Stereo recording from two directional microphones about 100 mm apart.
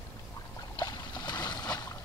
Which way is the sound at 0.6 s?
40° left (ahead or behind).